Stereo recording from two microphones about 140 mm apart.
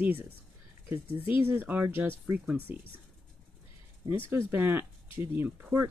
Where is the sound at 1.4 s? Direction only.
15° right (ahead or behind).